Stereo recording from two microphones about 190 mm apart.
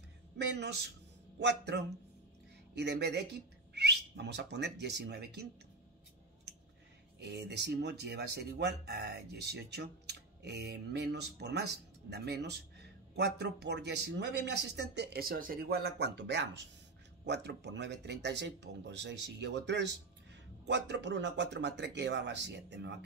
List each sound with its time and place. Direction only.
0.4 s speech: 65° right (ahead or behind)
7.2 s speech: 65° right (ahead or behind)